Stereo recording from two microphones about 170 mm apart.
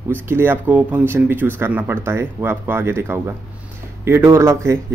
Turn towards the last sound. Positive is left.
turn(degrees=-15)  # may be behind; listen again after turning